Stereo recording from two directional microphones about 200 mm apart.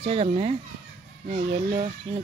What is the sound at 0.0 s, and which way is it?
Speech, 30° right (ahead or behind).